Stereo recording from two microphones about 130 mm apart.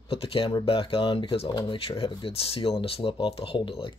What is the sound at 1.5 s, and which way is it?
Speech, 35° left (ahead or behind).